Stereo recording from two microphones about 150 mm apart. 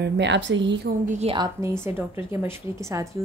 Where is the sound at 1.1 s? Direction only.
45° right (ahead or behind).